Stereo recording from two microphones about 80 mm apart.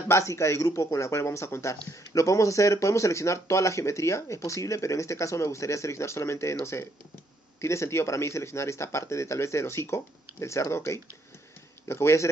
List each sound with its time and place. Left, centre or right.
0.1 s a man's voice: left